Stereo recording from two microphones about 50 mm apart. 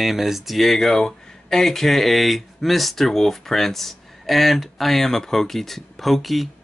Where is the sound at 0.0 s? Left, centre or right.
Centre.